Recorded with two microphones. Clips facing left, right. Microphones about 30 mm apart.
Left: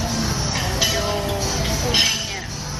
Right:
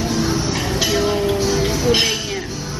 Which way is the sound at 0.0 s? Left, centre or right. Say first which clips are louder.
Right 4 dB; centre.